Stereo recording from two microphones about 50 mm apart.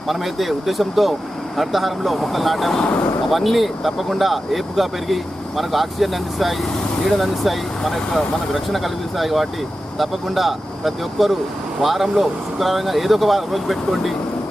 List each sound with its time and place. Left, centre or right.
0.1 s speech: centre